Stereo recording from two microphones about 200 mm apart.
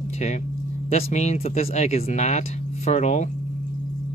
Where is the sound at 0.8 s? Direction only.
35° left (ahead or behind).